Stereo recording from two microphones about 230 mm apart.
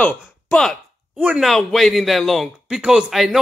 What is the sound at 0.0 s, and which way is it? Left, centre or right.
A woman's voice, centre.